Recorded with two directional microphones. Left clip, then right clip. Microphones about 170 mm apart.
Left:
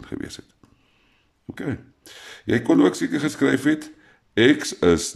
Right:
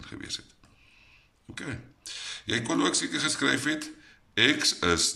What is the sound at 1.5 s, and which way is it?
Speech, 45° left (ahead or behind).